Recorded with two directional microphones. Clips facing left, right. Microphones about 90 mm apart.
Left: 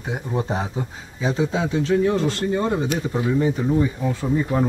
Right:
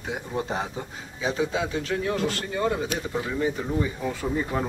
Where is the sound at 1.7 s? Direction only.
25° left (ahead or behind).